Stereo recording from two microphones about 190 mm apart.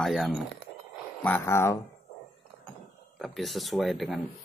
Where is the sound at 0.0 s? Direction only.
Centre (ahead or behind).